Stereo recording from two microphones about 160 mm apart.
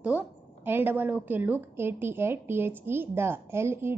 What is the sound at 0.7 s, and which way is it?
A woman's voice, 10° right (ahead or behind).